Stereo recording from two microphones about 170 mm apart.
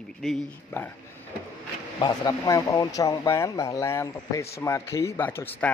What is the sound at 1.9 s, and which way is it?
A man's voice, 25° left (ahead or behind).